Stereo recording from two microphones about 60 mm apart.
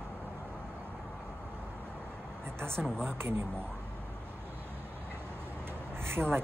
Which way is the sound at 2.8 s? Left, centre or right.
Right.